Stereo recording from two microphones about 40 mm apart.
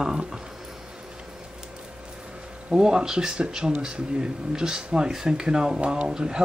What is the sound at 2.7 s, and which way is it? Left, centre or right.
Speech, centre.